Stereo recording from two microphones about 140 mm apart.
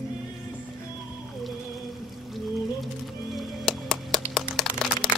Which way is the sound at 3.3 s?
Centre (ahead or behind).